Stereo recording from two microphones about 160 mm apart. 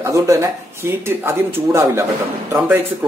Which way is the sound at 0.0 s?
20° right (ahead or behind).